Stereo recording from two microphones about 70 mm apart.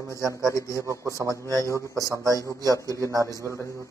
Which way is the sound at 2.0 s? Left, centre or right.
Right.